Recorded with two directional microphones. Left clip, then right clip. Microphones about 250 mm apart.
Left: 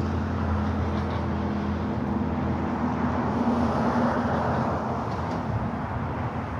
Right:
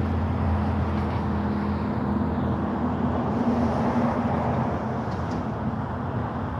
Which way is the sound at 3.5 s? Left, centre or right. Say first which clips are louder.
Even; left.